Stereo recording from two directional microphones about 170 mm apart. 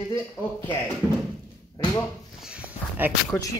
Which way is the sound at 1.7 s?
20° left (ahead or behind).